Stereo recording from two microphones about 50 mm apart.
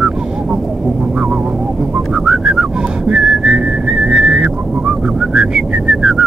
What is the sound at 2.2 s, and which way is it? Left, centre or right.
Whistling, centre.